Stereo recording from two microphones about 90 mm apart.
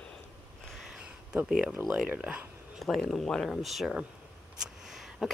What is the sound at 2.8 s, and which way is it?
Speech, 5° left (ahead or behind).